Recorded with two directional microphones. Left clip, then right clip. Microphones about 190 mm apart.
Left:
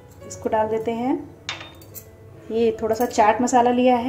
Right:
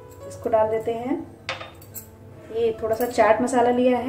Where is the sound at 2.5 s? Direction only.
40° left (ahead or behind).